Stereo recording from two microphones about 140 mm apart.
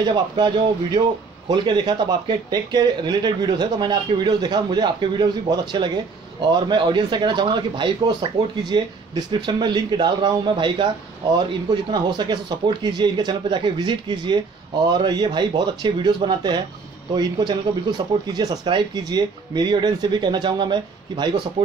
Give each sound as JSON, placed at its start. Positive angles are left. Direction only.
{"t": 0.0, "sound": "speech", "side_deg": -30}
{"t": 1.5, "sound": "speech", "side_deg": -30}